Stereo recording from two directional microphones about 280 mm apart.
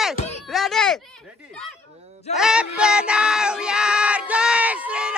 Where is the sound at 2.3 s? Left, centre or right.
Centre.